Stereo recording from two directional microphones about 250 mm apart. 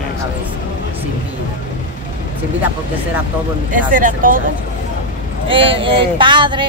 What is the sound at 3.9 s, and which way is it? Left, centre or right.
Speech, right.